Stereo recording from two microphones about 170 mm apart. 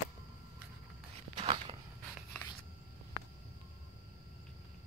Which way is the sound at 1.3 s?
35° right (ahead or behind).